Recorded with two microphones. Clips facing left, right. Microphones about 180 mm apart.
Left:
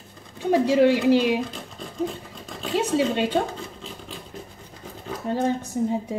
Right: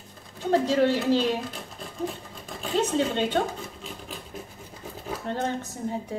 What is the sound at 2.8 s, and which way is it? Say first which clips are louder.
Speech: left 2 dB; 10° left (ahead or behind).